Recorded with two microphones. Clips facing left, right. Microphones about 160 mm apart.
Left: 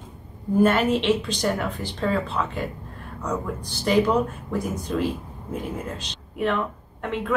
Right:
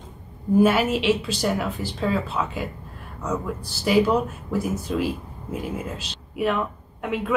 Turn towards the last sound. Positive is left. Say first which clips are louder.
# right 1 dB
turn(degrees=-5)  # may be behind; listen again after turning